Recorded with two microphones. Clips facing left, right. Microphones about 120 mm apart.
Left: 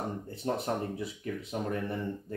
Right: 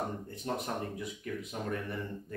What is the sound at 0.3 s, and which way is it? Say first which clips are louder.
Speech: left 4 dB; 30° left (ahead or behind).